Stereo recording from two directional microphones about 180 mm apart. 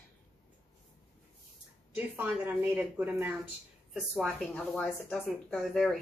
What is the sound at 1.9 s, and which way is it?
A woman's voice, 10° right (ahead or behind).